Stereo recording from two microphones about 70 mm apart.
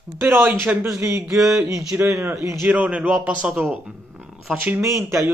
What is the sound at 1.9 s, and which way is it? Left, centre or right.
A man's voice, right.